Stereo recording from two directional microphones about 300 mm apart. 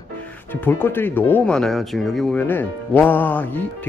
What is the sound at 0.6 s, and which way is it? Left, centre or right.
Speech, centre.